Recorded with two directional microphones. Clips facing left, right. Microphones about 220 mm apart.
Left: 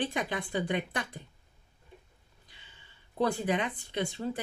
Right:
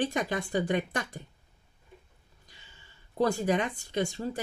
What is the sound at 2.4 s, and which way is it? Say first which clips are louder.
Speech: right 2 dB; 45° right (ahead or behind).